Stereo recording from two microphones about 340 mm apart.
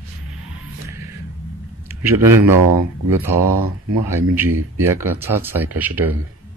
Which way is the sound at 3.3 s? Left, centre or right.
Right.